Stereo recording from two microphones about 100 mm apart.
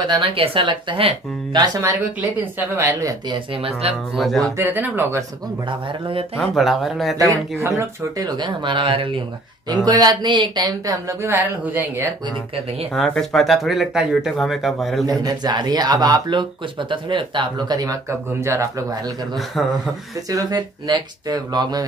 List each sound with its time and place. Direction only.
0.0 s speech: 55° right (ahead or behind)
1.8 s speech: 20° right (ahead or behind)
3.8 s speech: 80° right
4.4 s speech: 25° right (ahead or behind)
5.7 s speech: 60° right (ahead or behind)
6.3 s speech: centre (ahead or behind)
7.2 s speech: 30° right (ahead or behind); by 9.1 s 60° right (ahead or behind)
9.8 s speech: 40° right (ahead or behind)
11.2 s speech: 25° right (ahead or behind)
12.9 s speech: 5° left (ahead or behind)
15.0 s speech: 40° right (ahead or behind)
18.4 s speech: 30° right (ahead or behind)
20.2 s speech: 40° right (ahead or behind)